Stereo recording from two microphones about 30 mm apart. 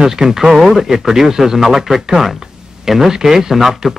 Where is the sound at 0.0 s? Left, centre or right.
Centre.